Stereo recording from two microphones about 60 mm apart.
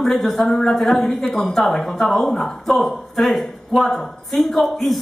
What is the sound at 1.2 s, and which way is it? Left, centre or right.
Speech, left.